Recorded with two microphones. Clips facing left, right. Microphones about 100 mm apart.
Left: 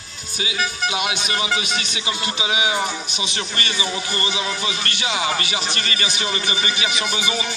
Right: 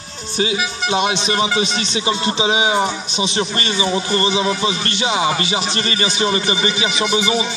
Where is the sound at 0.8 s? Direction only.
30° right (ahead or behind).